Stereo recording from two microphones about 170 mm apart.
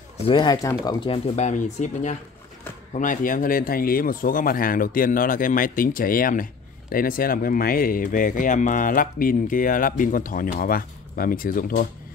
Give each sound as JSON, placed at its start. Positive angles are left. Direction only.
{"t": 0.3, "sound": "speech", "side_deg": 25}